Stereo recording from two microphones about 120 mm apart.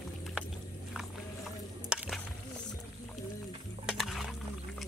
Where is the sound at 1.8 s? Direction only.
10° right (ahead or behind).